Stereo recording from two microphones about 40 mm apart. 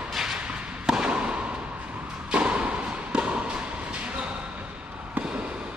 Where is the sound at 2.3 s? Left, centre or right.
Right.